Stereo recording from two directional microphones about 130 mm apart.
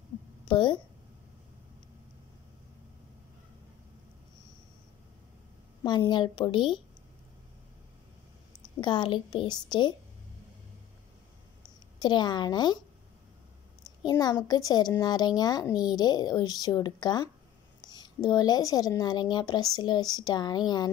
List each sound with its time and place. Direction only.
0.5 s a woman's voice: 35° left (ahead or behind)
5.9 s a woman's voice: 35° left (ahead or behind)
8.8 s a woman's voice: 35° left (ahead or behind)
12.0 s a woman's voice: 35° left (ahead or behind)
14.0 s a woman's voice: 30° left (ahead or behind)